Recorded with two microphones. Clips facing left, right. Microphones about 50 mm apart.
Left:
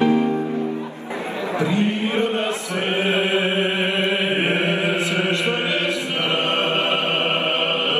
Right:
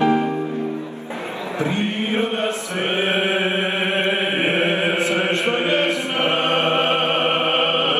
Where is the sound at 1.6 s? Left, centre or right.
Right.